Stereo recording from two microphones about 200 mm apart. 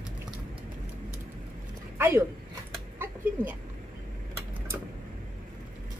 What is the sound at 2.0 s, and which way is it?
Speech, 10° right (ahead or behind).